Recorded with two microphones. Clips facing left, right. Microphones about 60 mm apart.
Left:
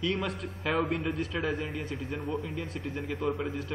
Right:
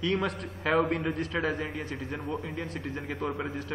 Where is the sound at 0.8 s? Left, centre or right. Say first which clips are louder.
Right 2 dB; right.